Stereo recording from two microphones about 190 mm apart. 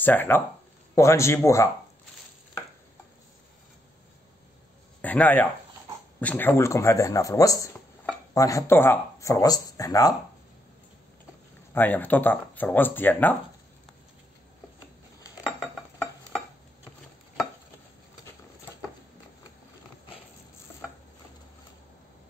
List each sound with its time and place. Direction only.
0.0 s speech: 10° left (ahead or behind)
5.0 s speech: 10° left (ahead or behind)
11.7 s speech: 10° left (ahead or behind)